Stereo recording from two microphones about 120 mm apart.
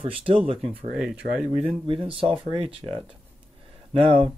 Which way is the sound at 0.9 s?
5° right (ahead or behind).